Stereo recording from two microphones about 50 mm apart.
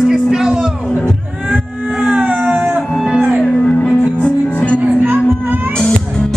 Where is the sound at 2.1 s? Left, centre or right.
Right.